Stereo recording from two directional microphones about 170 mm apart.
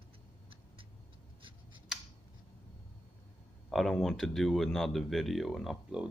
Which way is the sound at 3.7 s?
Centre (ahead or behind).